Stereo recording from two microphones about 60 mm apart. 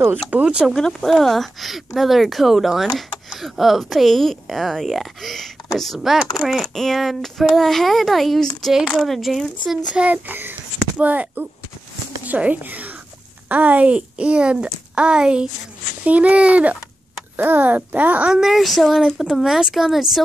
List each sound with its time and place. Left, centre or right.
0.3 s speech: right
0.7 s speech: centre
9.9 s a child's voice: right
18.3 s speech: centre